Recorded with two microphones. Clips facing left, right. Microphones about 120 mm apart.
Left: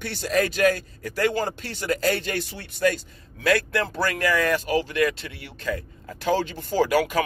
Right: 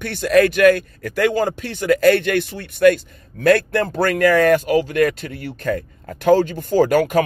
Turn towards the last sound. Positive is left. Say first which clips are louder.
# right 6 dB
turn(degrees=-50)  # may be behind; listen again after turning